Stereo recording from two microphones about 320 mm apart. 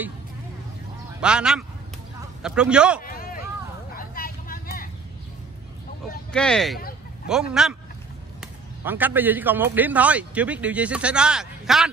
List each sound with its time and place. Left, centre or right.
1.2 s a man's voice: centre
3.0 s a sound: left
3.9 s vehicle: left
6.3 s a man's voice: centre